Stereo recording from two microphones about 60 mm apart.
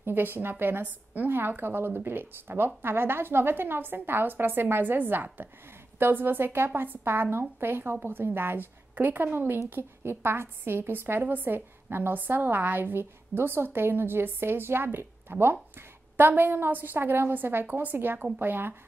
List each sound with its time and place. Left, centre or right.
0.0 s a woman's voice: right